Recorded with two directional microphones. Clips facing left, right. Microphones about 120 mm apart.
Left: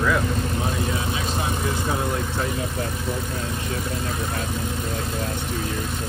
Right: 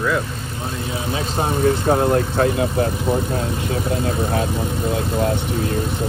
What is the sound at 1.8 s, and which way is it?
Speech, 60° right (ahead or behind).